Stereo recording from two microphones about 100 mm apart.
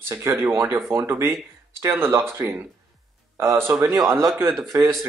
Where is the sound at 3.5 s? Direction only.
25° right (ahead or behind).